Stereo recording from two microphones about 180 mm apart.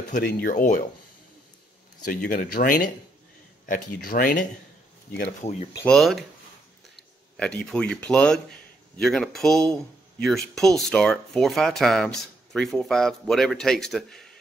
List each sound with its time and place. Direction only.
0.1 s speech: 55° left (ahead or behind)
2.0 s speech: 50° left (ahead or behind)
4.0 s speech: 50° left (ahead or behind)
5.4 s speech: 35° left (ahead or behind)
5.9 s speech: centre (ahead or behind)
7.3 s speech: 5° left (ahead or behind)